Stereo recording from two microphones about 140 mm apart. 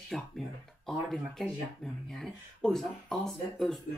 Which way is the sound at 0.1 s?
Centre (ahead or behind).